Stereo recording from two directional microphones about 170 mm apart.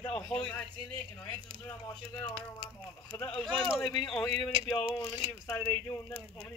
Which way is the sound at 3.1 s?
20° left (ahead or behind).